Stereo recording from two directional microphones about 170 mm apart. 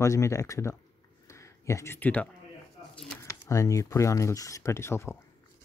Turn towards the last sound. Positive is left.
turn(degrees=15)  # may be behind; listen again after turning